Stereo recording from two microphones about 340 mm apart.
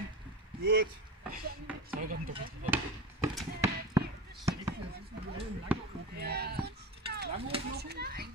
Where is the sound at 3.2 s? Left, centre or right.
Centre.